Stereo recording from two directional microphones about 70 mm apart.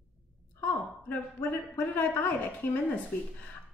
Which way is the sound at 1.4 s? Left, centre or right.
Left.